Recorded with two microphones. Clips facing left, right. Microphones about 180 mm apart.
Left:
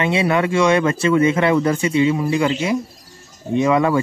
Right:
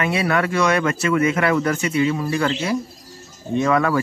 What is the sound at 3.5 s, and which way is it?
Speech, 20° left (ahead or behind).